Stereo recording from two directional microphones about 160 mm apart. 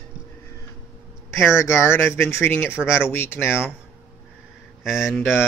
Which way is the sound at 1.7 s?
15° left (ahead or behind).